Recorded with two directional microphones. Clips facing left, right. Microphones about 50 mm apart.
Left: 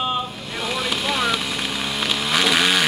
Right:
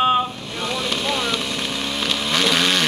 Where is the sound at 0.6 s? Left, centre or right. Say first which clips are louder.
Even; centre.